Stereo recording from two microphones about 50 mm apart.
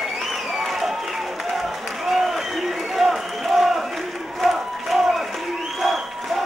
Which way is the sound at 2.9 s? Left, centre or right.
Centre.